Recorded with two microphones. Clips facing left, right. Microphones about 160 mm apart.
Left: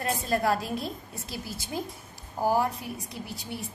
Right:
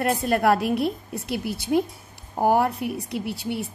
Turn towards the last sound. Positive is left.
turn(degrees=-70)  # may be behind; listen again after turning